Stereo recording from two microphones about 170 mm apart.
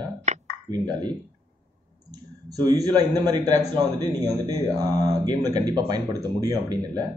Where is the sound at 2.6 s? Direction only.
25° right (ahead or behind).